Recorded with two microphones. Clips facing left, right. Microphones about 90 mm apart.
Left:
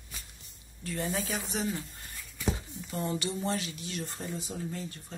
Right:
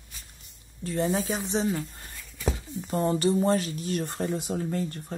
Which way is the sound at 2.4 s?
40° right (ahead or behind).